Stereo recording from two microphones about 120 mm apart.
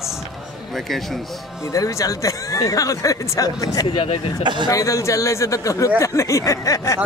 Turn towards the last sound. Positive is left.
turn(degrees=30)  # may be behind; listen again after turning